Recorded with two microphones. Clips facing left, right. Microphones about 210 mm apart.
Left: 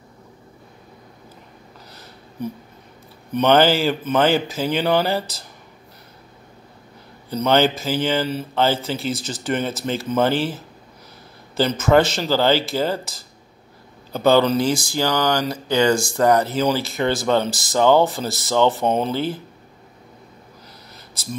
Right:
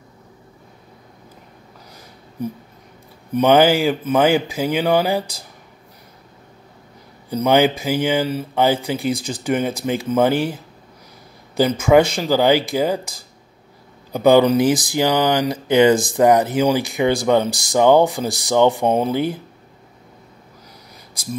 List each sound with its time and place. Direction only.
3.3 s speech: 10° right (ahead or behind)
7.2 s speech: 10° right (ahead or behind)
20.9 s a sound: 10° right (ahead or behind)